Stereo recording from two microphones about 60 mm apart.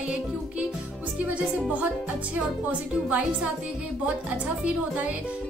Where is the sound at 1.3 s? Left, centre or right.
Right.